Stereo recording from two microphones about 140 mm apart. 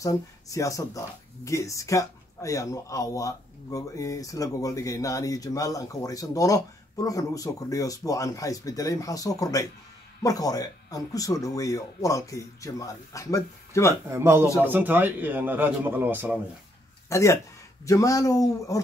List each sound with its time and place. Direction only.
0.0 s speech: 25° left (ahead or behind)
14.1 s speech: 20° right (ahead or behind)
17.1 s speech: 20° left (ahead or behind)